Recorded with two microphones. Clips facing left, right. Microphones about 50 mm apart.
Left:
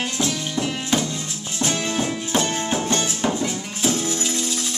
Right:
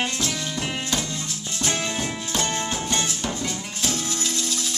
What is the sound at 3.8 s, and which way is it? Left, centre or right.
Music, centre.